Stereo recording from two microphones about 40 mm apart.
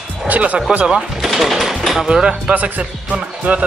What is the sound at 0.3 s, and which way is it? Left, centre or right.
Speech, right.